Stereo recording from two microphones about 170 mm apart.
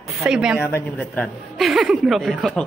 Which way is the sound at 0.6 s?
15° left (ahead or behind).